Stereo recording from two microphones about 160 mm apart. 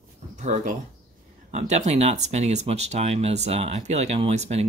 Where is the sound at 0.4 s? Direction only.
50° right (ahead or behind).